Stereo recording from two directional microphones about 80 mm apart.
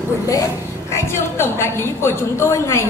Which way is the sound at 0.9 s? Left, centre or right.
Left.